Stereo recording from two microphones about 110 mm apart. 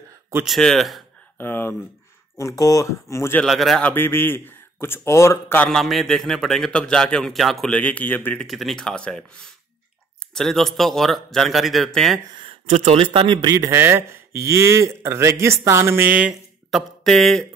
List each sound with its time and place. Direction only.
0.5 s a man's voice: centre (ahead or behind)
1.4 s speech: 20° left (ahead or behind)
2.3 s speech: 30° left (ahead or behind)
3.4 s a man's voice: centre (ahead or behind)
3.8 s speech: 20° left (ahead or behind)
5.7 s a man's voice: centre (ahead or behind)
7.7 s speech: 15° left (ahead or behind)
8.5 s a man's voice: centre (ahead or behind)
10.3 s a man's voice: centre (ahead or behind)
12.6 s speech: 75° right (ahead or behind); by 13.7 s 35° right (ahead or behind)
13.7 s speech: 20° right (ahead or behind); by 17.5 s centre (ahead or behind)